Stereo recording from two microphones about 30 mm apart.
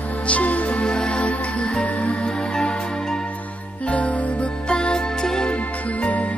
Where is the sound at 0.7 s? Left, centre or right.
Left.